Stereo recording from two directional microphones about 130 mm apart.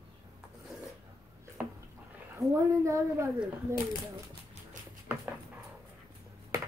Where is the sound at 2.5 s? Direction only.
20° right (ahead or behind).